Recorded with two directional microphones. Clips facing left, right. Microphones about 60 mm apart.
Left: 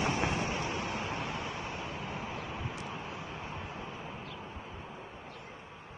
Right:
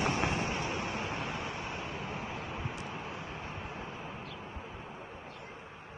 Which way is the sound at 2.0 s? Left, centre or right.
Right.